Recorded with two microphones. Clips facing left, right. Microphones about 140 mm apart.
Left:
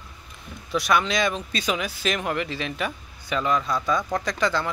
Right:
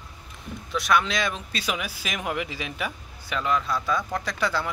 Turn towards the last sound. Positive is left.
turn(degrees=-5)  # may be behind; listen again after turning